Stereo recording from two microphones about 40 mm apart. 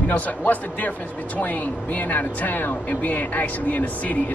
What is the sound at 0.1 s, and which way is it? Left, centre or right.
Speech, left.